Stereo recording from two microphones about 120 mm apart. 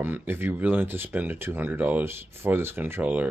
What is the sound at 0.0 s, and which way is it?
Speech, 15° right (ahead or behind).